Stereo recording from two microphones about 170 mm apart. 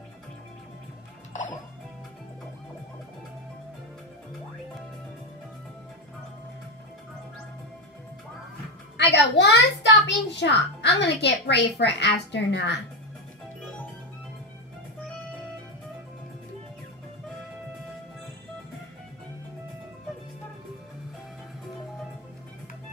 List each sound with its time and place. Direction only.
1.3 s music: 45° left (ahead or behind)
8.9 s a child's voice: 90° left